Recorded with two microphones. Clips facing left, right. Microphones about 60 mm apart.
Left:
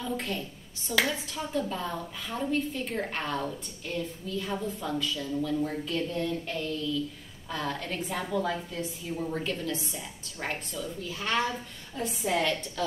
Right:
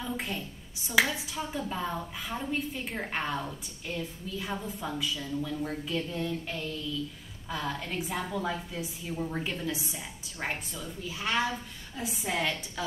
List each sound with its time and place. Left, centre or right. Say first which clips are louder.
0.0 s a woman's voice: left 2 dB; centre